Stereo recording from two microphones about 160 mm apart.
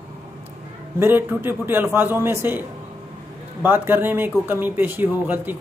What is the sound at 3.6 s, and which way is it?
A man's voice, 10° right (ahead or behind).